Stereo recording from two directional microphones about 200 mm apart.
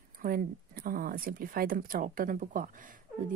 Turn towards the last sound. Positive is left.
turn(degrees=-40)  # may be behind; listen again after turning